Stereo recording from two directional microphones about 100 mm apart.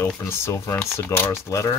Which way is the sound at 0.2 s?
25° left (ahead or behind).